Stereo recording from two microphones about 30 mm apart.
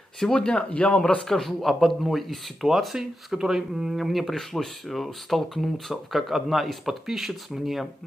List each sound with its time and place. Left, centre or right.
0.3 s speech: left
0.6 s a man's voice: left
1.2 s speech: centre
3.3 s speech: centre
3.9 s speech: centre
6.1 s speech: centre